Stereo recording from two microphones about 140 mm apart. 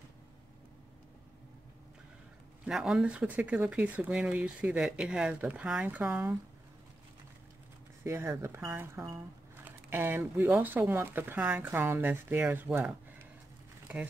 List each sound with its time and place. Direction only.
2.6 s speech: 5° right (ahead or behind)
8.0 s speech: 20° right (ahead or behind)